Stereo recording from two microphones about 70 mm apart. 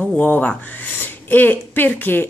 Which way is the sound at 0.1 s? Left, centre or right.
Left.